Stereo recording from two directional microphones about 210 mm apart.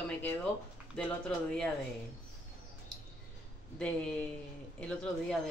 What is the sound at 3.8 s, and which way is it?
A woman's voice, 5° left (ahead or behind).